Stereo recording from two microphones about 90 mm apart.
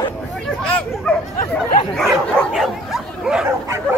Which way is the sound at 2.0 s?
Centre (ahead or behind).